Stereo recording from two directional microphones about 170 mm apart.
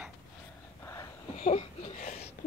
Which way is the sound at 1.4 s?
40° left (ahead or behind).